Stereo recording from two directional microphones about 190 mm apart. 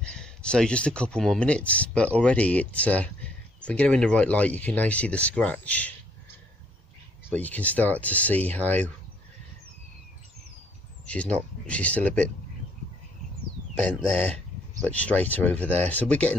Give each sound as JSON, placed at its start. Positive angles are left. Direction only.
{"t": 0.0, "sound": "speech", "side_deg": 5}
{"t": 7.2, "sound": "speech", "side_deg": 10}
{"t": 11.1, "sound": "speech", "side_deg": 5}
{"t": 13.8, "sound": "speech", "side_deg": 5}